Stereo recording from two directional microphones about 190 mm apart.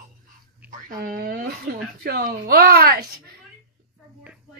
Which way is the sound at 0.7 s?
50° right (ahead or behind).